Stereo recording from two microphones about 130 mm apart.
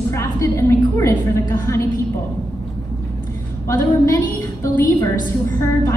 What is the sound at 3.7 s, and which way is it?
A woman's voice, 25° left (ahead or behind).